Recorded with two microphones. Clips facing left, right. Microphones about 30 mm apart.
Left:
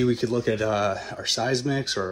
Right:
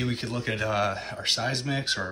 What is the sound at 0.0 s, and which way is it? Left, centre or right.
Speech, centre.